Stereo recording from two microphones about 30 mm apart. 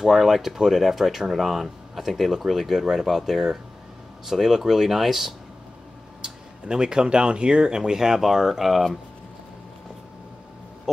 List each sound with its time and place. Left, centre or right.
0.0 s speech: centre
6.2 s speech: right
8.2 s speech: centre